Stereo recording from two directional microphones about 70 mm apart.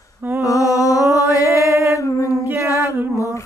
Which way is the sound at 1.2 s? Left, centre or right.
Left.